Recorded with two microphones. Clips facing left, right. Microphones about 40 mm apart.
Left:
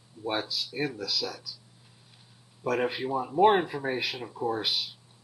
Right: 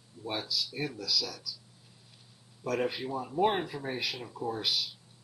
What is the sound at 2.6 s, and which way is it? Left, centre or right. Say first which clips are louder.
Speech: left 3 dB; centre.